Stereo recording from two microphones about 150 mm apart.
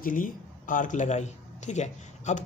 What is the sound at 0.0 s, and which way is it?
Speech, 65° left (ahead or behind).